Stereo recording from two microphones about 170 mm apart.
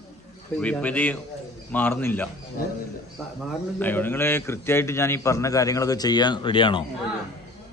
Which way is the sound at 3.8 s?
10° left (ahead or behind).